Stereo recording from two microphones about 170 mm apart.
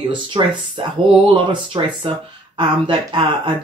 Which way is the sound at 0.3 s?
30° right (ahead or behind).